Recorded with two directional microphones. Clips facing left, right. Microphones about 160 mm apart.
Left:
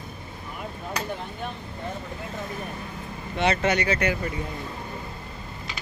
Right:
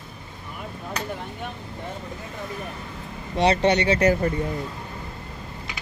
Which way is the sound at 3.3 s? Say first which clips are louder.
Right 4 dB; 30° right (ahead or behind).